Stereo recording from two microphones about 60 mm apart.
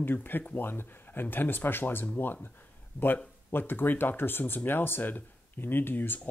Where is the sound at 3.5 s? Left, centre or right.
Left.